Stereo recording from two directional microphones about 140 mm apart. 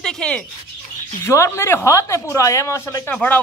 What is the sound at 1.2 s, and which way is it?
A man's voice, 20° left (ahead or behind).